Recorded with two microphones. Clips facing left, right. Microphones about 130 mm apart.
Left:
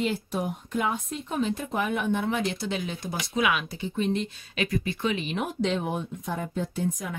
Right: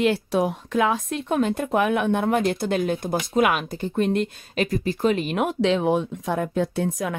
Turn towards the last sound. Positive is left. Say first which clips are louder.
# right 5 dB
turn(degrees=-90)